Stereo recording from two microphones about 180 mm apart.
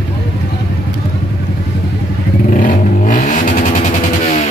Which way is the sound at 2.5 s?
45° left (ahead or behind).